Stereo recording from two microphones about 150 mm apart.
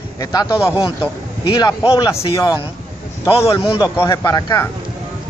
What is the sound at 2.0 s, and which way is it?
Speech, 20° left (ahead or behind).